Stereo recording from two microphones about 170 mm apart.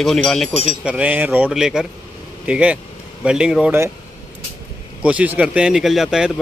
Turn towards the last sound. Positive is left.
turn(degrees=-5)  # may be behind; listen again after turning